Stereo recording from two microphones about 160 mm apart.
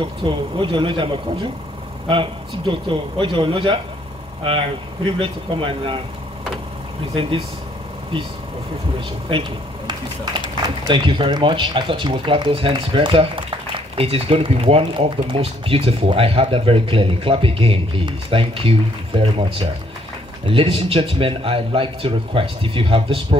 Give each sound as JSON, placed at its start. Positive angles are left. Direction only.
{"t": 0.0, "sound": "speech", "side_deg": -30}
{"t": 7.2, "sound": "speech", "side_deg": -35}
{"t": 9.3, "sound": "speech", "side_deg": -30}